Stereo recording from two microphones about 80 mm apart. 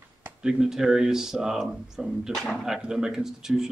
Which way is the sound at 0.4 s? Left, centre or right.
Centre.